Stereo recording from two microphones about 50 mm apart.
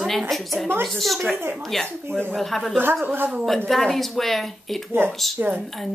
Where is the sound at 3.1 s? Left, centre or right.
Right.